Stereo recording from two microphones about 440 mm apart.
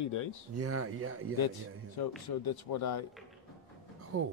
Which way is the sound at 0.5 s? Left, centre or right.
Right.